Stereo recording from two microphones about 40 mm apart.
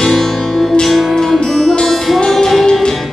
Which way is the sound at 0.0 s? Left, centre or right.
Centre.